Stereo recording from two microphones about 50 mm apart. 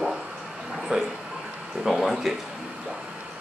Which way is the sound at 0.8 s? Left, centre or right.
Centre.